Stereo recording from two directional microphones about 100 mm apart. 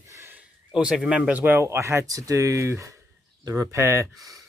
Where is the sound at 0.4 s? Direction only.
10° right (ahead or behind); by 4.5 s 35° right (ahead or behind).